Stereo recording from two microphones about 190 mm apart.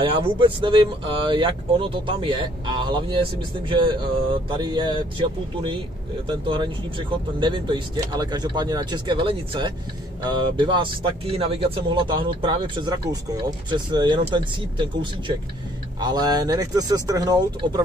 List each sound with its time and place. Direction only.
0.0 s speech: 25° right (ahead or behind)
16.0 s speech: 20° right (ahead or behind)